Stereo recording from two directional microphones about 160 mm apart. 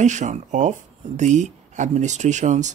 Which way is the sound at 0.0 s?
50° right (ahead or behind).